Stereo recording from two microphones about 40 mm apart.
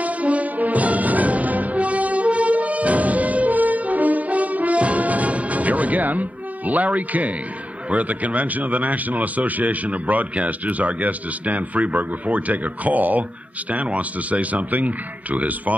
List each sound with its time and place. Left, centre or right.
0.0 s music: right
7.9 s speech: right